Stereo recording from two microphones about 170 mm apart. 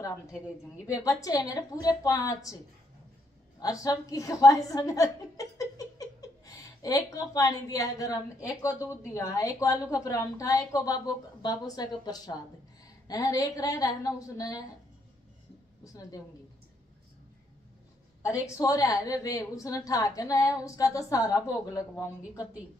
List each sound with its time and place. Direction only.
1.0 s a woman's voice: 20° left (ahead or behind)
15.8 s a woman's voice: 20° left (ahead or behind)
18.6 s a woman's voice: 20° left (ahead or behind)